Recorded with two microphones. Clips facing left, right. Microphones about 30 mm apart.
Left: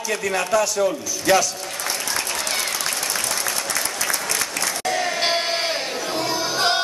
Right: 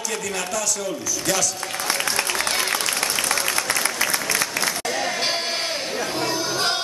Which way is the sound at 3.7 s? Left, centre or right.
Centre.